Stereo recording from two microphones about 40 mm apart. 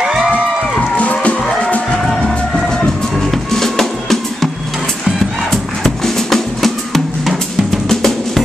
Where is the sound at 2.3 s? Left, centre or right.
Centre.